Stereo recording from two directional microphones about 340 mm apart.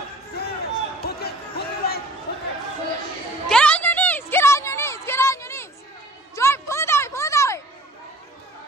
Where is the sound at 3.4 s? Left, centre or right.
Centre.